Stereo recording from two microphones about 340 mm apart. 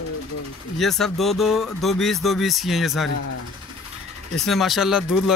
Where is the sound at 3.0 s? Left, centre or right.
Left.